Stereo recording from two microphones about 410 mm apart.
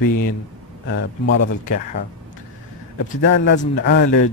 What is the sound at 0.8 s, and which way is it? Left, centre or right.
Speech, left.